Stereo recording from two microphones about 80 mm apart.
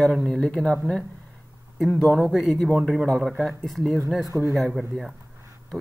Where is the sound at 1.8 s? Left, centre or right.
Centre.